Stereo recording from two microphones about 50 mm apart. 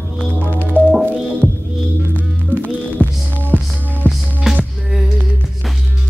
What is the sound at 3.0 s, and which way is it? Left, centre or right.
Music, right.